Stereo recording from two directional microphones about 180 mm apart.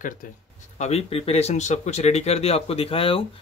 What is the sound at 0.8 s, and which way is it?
Speech, 35° left (ahead or behind).